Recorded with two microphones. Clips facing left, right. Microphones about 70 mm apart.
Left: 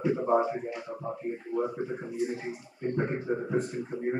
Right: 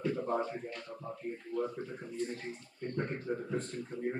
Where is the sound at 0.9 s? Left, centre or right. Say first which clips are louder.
Left 7 dB; left.